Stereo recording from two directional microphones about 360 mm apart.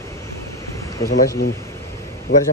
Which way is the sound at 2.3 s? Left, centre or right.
Left.